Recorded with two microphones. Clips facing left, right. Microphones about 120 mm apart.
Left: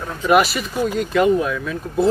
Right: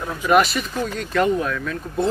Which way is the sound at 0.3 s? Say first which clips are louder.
Left 1 dB; 5° left (ahead or behind).